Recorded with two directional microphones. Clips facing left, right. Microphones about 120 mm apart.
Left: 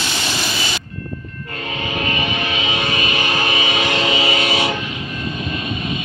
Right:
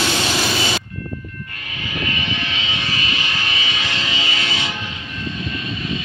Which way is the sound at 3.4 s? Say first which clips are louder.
Left 7 dB; 25° left (ahead or behind).